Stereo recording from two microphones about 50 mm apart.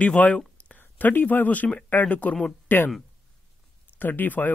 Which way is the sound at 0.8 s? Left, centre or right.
Left.